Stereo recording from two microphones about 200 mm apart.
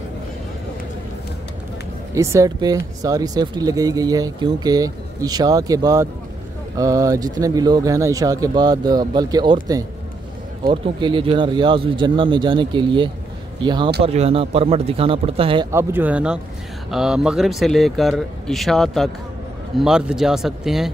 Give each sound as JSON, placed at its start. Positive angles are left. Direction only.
{"t": 2.1, "sound": "speech", "side_deg": -15}
{"t": 15.7, "sound": "a man's voice", "side_deg": -10}